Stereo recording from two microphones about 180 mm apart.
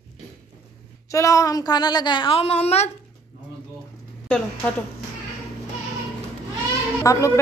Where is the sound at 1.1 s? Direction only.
15° left (ahead or behind); by 2.9 s 35° left (ahead or behind).